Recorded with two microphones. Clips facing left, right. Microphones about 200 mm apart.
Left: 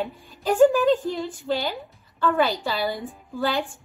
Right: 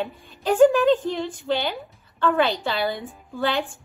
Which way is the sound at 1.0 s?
20° right (ahead or behind).